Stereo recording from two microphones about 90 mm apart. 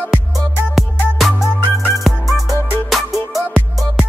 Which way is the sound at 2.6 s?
25° left (ahead or behind).